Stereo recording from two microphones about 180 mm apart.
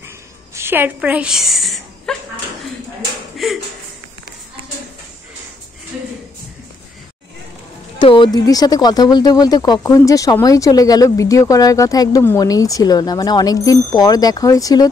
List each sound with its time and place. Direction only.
0.6 s speech: 10° right (ahead or behind)
3.4 s speech: centre (ahead or behind)
8.0 s speech: 25° left (ahead or behind)